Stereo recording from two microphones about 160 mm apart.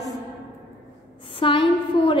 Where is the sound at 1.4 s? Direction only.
35° left (ahead or behind).